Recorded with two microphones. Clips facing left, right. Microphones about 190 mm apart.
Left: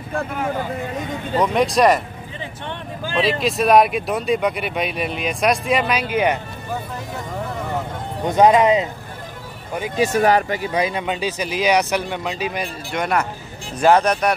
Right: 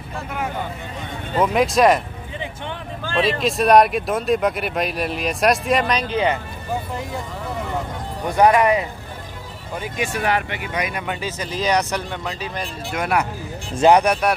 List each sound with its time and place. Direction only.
1.4 s speech: centre (ahead or behind)
3.2 s speech: centre (ahead or behind)
8.2 s speech: 20° left (ahead or behind)
9.9 s speech: 40° left (ahead or behind); by 12.6 s 15° left (ahead or behind)
12.9 s speech: 5° right (ahead or behind)
13.7 s speech: 15° right (ahead or behind)